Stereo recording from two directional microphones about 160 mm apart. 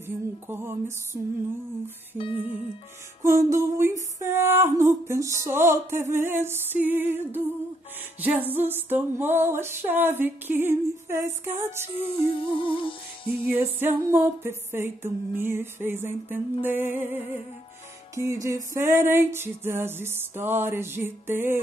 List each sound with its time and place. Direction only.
0.0 s music: 15° right (ahead or behind)
2.1 s music: 35° left (ahead or behind)
3.2 s music: 20° right (ahead or behind)
12.0 s music: 35° left (ahead or behind)
13.5 s music: 15° right (ahead or behind)